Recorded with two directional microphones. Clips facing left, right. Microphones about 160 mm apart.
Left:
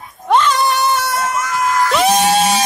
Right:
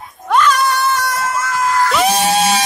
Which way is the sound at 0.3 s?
25° left (ahead or behind).